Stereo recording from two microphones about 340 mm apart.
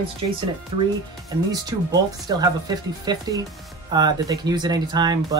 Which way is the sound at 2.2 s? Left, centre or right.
Centre.